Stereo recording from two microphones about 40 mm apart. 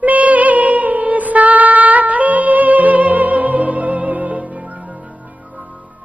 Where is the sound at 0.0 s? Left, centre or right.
Right.